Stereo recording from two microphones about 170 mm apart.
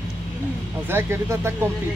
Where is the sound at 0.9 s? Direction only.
15° right (ahead or behind).